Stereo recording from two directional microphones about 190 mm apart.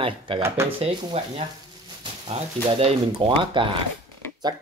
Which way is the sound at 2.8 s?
25° right (ahead or behind).